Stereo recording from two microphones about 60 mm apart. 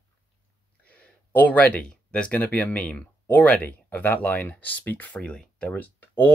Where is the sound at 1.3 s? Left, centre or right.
Left.